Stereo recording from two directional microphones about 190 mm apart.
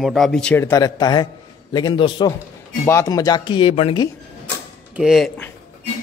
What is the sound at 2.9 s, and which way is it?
Speech, 15° left (ahead or behind).